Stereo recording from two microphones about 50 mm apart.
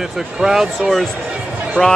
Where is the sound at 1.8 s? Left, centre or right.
Centre.